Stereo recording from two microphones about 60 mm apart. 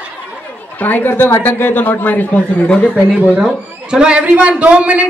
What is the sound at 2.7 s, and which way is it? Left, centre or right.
Speech, centre.